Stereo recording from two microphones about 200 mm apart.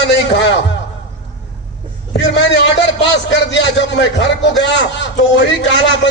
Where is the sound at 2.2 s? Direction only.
60° left (ahead or behind).